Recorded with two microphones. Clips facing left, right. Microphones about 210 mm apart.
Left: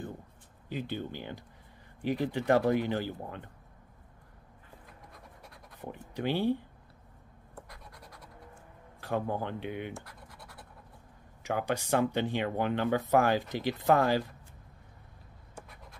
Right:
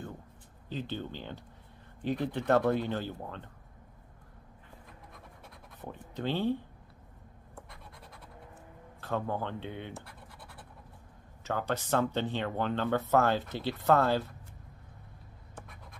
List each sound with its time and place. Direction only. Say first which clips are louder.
0.7 s speech: left 1 dB; 10° left (ahead or behind)
5.8 s speech: left 2 dB; 10° left (ahead or behind)
9.0 s speech: left 1 dB; 10° left (ahead or behind)
11.4 s speech: left 1 dB; 10° left (ahead or behind)